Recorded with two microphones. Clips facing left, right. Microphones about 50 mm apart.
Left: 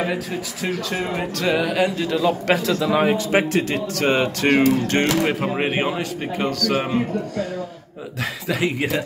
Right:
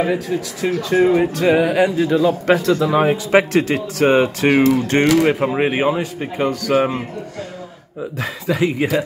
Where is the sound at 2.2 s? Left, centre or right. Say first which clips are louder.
Right 1 dB; centre.